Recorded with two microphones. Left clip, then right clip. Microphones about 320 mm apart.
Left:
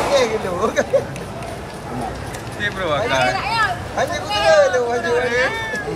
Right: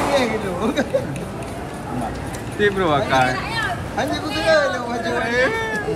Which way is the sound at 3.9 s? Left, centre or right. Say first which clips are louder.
Left 1 dB; left.